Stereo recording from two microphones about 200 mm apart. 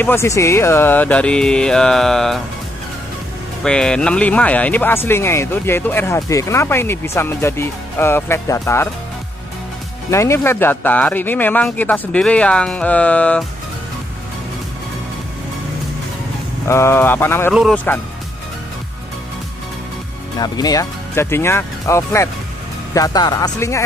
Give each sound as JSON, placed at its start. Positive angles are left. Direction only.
{"t": 0.0, "sound": "speech", "side_deg": 15}
{"t": 3.6, "sound": "speech", "side_deg": 5}
{"t": 10.1, "sound": "speech", "side_deg": 15}
{"t": 16.6, "sound": "speech", "side_deg": 15}
{"t": 20.3, "sound": "speech", "side_deg": 20}